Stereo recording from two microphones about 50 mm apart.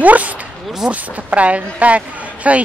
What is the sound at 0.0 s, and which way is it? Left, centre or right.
Speech, right.